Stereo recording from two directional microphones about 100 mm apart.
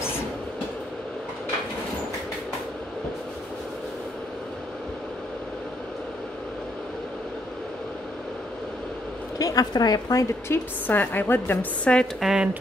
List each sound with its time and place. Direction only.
9.4 s a woman's voice: 35° left (ahead or behind)
10.5 s a woman's voice: 20° left (ahead or behind)
11.8 s a woman's voice: 10° left (ahead or behind)
12.2 s speech: 5° right (ahead or behind)